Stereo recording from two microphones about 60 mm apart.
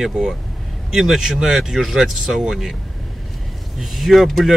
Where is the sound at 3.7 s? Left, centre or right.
Centre.